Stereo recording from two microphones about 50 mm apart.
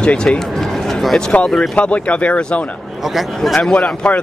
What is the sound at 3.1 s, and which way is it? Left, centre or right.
Speech, centre.